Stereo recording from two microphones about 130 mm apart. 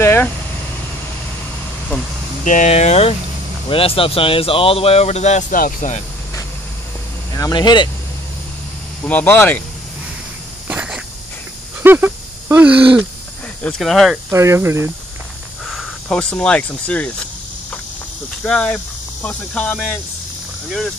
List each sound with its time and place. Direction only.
0.0 s speech: 20° left (ahead or behind)
2.4 s speech: 70° left (ahead or behind)
7.3 s speech: 30° left (ahead or behind)
9.0 s speech: 15° left (ahead or behind)
10.7 s a sound: 10° right (ahead or behind)
13.6 s speech: 5° left (ahead or behind)
14.3 s speech: 20° right (ahead or behind)
15.6 s speech: 5° left (ahead or behind)
18.4 s speech: 5° left (ahead or behind)